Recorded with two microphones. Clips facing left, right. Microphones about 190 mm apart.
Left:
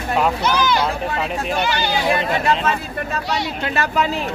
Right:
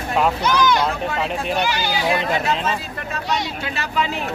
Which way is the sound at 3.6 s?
55° left (ahead or behind).